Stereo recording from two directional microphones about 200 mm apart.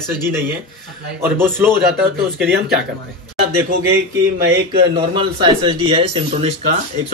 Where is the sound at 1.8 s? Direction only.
55° right (ahead or behind).